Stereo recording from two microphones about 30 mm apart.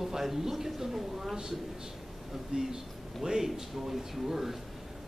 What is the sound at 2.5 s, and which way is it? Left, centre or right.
Speech, centre.